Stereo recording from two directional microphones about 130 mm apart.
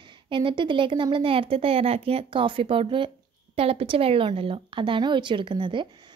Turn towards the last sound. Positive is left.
turn(degrees=-35)  # may be behind; listen again after turning